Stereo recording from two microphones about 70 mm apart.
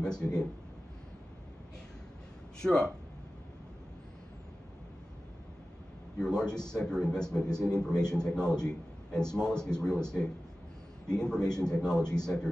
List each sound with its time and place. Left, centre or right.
0.0 s speech: centre
2.6 s a man's voice: centre
6.1 s a man's voice: centre